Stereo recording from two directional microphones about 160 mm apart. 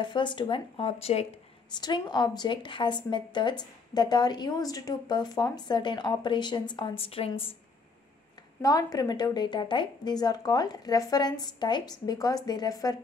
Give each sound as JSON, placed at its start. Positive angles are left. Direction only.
{"t": 0.0, "sound": "speech", "side_deg": 30}
{"t": 1.8, "sound": "a woman's voice", "side_deg": 25}
{"t": 8.6, "sound": "a woman's voice", "side_deg": 25}